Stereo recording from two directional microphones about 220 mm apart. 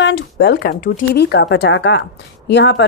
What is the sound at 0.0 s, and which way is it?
Speech, 50° left (ahead or behind).